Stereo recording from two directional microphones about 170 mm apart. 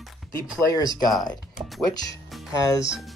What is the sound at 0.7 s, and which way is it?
Speech, 20° left (ahead or behind).